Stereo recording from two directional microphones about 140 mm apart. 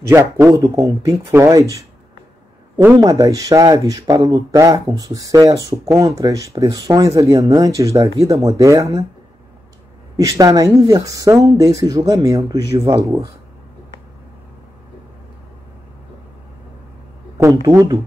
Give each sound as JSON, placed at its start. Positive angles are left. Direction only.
{"t": 0.1, "sound": "speech", "side_deg": -15}
{"t": 3.0, "sound": "speech", "side_deg": -25}
{"t": 10.1, "sound": "speech", "side_deg": -25}
{"t": 17.4, "sound": "speech", "side_deg": -20}